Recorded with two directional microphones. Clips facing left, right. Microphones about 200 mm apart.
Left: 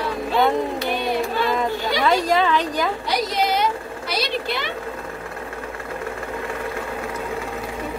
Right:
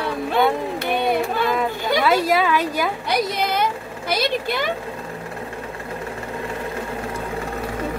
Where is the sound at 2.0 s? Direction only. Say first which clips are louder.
Even; 5° right (ahead or behind).